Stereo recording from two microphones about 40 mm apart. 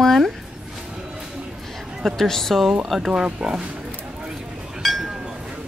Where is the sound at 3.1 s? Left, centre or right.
Right.